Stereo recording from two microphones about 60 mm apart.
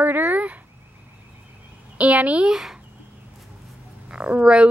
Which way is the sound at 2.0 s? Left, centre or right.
Right.